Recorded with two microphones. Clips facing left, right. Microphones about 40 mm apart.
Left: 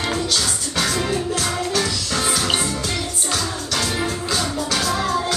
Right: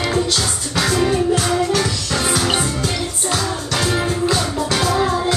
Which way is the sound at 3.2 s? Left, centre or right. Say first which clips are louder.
Right 5 dB; centre.